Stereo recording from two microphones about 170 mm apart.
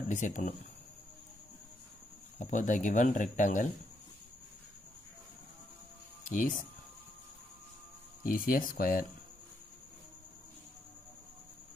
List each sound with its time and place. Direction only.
0.1 s speech: 45° left (ahead or behind)
2.3 s speech: 45° left (ahead or behind)
6.3 s speech: 50° left (ahead or behind)
8.2 s speech: 55° left (ahead or behind)